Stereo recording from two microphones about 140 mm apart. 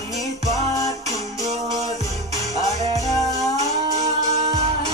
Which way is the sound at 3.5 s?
50° right (ahead or behind).